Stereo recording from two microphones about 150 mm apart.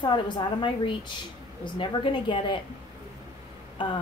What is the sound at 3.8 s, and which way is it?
Speech, 35° left (ahead or behind).